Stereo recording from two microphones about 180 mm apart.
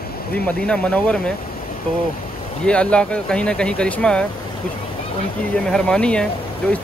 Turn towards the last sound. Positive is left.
turn(degrees=5)  # may be behind; listen again after turning